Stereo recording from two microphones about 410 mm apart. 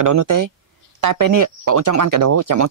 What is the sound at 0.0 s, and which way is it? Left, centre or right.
Speech, right.